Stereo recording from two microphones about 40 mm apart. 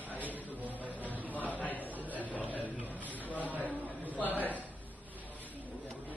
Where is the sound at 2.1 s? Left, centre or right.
Left.